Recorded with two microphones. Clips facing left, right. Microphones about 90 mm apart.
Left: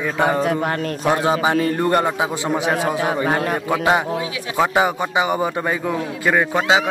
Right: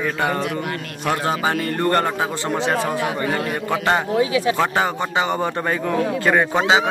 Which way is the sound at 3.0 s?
45° left (ahead or behind).